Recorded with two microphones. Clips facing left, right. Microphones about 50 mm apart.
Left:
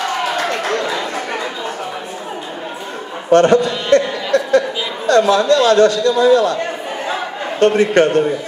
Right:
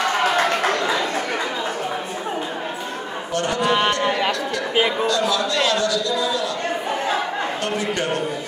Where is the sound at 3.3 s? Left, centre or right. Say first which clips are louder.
Left 14 dB; left.